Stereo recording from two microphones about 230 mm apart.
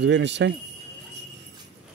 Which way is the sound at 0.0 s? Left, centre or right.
Right.